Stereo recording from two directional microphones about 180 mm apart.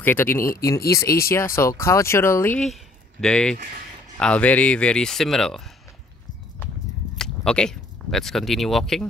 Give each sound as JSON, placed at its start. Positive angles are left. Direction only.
{"t": 0.0, "sound": "speech", "side_deg": 10}
{"t": 2.6, "sound": "speech", "side_deg": 5}
{"t": 7.2, "sound": "speech", "side_deg": 5}